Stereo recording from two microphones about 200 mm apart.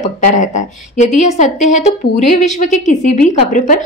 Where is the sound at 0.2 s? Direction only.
40° left (ahead or behind).